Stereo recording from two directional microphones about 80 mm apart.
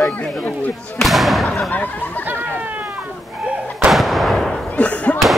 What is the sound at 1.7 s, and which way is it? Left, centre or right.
Speech, left.